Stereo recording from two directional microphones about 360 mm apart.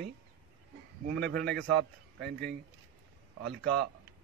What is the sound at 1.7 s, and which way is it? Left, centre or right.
Speech, right.